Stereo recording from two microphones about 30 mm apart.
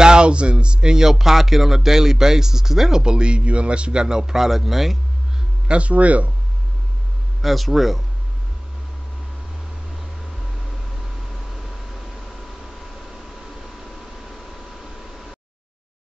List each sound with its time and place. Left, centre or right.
0.0 s speech: right
0.9 s speech: centre
3.0 s speech: right
4.2 s speech: centre
5.7 s speech: right
7.4 s speech: centre
11.5 s a sound: centre